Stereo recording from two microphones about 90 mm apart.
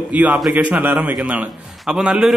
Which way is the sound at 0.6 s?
15° right (ahead or behind).